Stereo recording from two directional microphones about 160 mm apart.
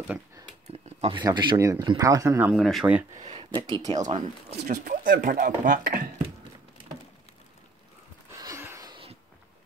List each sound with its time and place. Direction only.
0.8 s a sound: 40° right (ahead or behind)
1.2 s speech: 30° right (ahead or behind)
2.5 s speech: centre (ahead or behind)
3.3 s speech: 30° right (ahead or behind)
4.5 s speech: 45° right (ahead or behind)
4.8 s speech: 60° right (ahead or behind)
8.3 s a sound: 20° right (ahead or behind)